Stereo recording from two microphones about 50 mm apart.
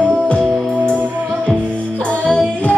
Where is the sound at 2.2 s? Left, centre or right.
Left.